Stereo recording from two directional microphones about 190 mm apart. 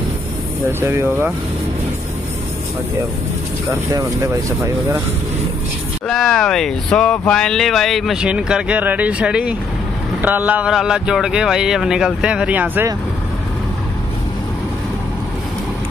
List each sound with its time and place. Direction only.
0.7 s speech: 10° right (ahead or behind)
3.6 s speech: 15° right (ahead or behind)
6.0 s speech: 5° left (ahead or behind)